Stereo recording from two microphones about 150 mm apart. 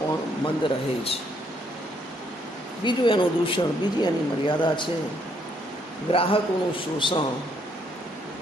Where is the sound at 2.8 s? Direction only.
35° left (ahead or behind).